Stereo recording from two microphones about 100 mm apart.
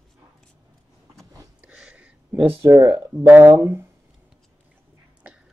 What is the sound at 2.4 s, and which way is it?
Speech, 25° right (ahead or behind).